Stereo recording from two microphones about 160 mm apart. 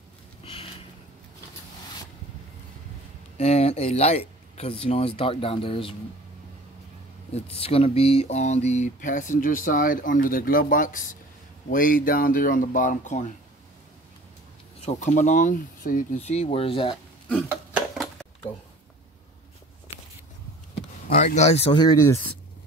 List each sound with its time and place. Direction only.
0.4 s sniff: 35° left (ahead or behind)
3.3 s speech: 40° left (ahead or behind)
7.3 s speech: 40° left (ahead or behind)
14.8 s speech: 45° left (ahead or behind)
16.2 s speech: 40° left (ahead or behind)
17.9 s a sound: centre (ahead or behind)
21.1 s speech: 55° left (ahead or behind)
21.7 s speech: 20° left (ahead or behind)